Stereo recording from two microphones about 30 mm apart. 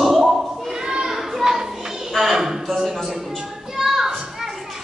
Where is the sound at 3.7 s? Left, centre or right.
Centre.